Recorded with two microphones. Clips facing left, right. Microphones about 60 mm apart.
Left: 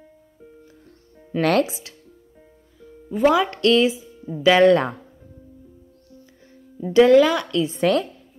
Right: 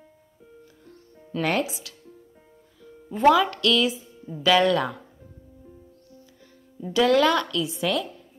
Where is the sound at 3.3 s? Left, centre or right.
Centre.